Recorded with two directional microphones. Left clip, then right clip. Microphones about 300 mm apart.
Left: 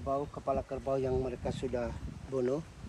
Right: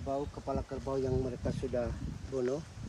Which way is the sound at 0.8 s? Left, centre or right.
Left.